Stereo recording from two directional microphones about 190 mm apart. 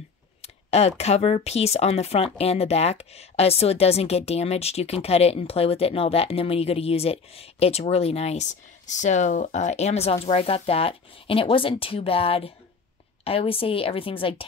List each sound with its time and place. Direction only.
0.4 s speech: 35° left (ahead or behind)